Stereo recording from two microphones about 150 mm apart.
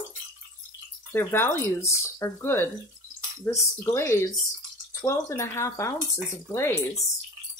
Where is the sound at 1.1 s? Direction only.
15° left (ahead or behind).